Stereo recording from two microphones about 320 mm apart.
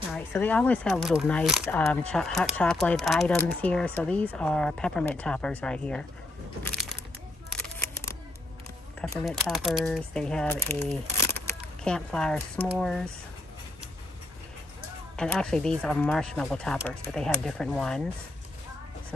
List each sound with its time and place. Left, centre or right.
0.1 s speech: centre
6.6 s crushing: centre
7.6 s single-lens reflex camera: centre
9.1 s speech: centre
15.1 s speech: centre